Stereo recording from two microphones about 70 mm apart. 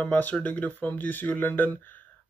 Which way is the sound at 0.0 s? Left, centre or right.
Centre.